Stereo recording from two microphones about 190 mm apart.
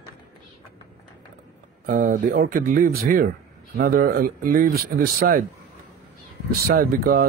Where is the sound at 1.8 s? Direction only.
45° right (ahead or behind).